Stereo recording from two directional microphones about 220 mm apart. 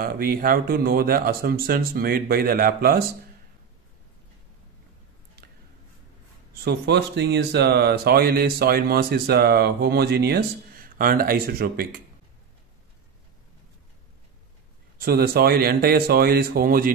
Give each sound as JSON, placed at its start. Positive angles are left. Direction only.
{"t": 0.0, "sound": "speech", "side_deg": -45}
{"t": 6.6, "sound": "speech", "side_deg": -50}
{"t": 15.0, "sound": "speech", "side_deg": -45}